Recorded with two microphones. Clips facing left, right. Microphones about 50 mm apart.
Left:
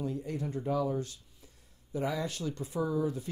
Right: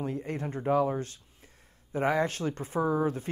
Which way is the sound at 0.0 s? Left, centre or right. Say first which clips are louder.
Right 2 dB; right.